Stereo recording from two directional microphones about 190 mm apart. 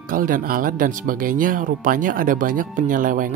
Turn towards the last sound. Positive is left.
turn(degrees=-45)  # may be behind; listen again after turning